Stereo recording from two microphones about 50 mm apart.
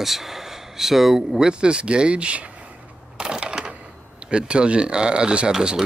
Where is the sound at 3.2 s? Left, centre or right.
Centre.